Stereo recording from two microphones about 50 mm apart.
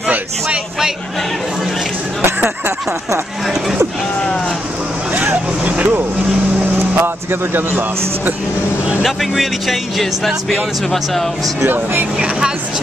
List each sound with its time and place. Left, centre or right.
5.7 s speech: right
9.0 s speech: centre
11.6 s speech: right